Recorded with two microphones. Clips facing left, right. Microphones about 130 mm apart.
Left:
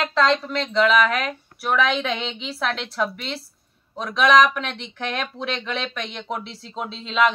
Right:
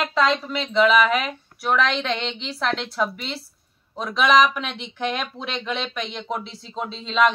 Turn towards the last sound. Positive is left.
turn(degrees=0)  # may be behind; listen again after turning